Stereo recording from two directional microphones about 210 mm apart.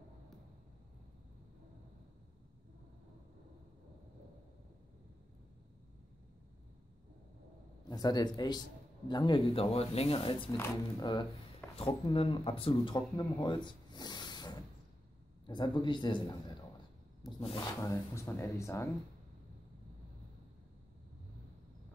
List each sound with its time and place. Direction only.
7.9 s a man's voice: 20° left (ahead or behind)
17.2 s speech: centre (ahead or behind)
17.8 s speech: 15° left (ahead or behind)